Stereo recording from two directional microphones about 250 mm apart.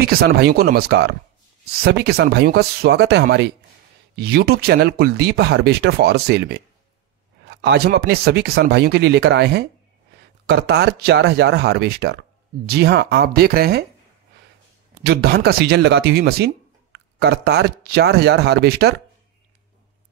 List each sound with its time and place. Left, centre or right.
0.0 s speech: right
15.0 s speech: right